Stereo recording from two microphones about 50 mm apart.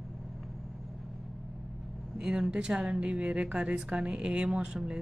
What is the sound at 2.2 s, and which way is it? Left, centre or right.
A woman's voice, centre.